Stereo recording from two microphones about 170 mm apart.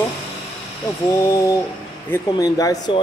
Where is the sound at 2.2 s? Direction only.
20° left (ahead or behind).